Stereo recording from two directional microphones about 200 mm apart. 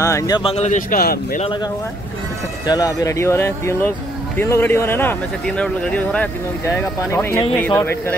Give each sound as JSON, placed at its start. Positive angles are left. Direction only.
{"t": 0.0, "sound": "speech", "side_deg": 15}
{"t": 0.4, "sound": "speech", "side_deg": 30}
{"t": 1.4, "sound": "speech", "side_deg": 25}